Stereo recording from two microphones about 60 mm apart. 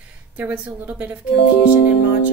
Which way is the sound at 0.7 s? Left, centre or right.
Right.